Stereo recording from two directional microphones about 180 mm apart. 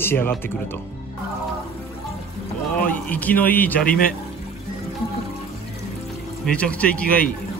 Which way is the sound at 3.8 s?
50° left (ahead or behind).